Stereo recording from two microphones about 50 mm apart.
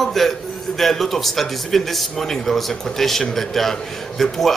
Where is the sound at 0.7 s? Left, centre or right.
Centre.